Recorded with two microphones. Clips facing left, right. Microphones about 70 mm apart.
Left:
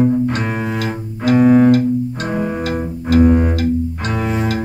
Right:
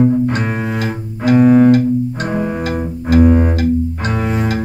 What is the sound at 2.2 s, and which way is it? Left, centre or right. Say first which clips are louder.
Double bass: right 1 dB; centre.